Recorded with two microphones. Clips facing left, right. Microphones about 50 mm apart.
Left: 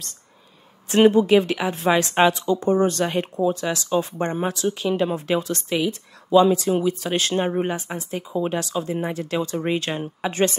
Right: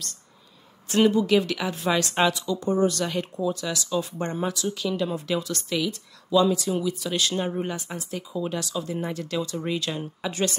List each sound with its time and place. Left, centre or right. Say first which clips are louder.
0.8 s speech: left 5 dB; left